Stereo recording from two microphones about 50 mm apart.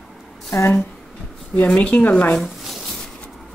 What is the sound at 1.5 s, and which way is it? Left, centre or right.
Speech, left.